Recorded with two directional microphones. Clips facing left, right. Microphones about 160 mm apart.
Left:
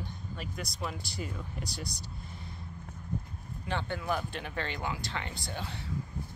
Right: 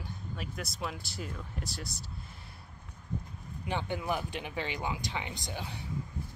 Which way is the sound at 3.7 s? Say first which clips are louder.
Even; 15° right (ahead or behind).